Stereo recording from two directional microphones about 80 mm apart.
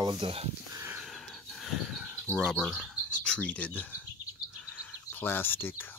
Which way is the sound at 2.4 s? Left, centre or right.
Centre.